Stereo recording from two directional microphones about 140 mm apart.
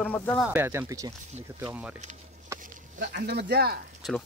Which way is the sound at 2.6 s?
80° right.